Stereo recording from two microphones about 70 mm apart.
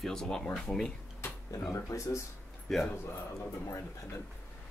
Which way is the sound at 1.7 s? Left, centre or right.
Left.